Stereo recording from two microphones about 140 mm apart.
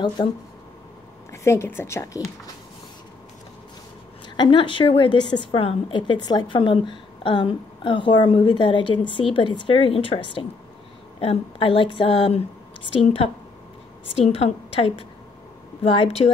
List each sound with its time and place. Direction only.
0.2 s a woman's voice: 30° left (ahead or behind)
1.3 s a woman's voice: 20° left (ahead or behind)
4.4 s a woman's voice: 35° left (ahead or behind)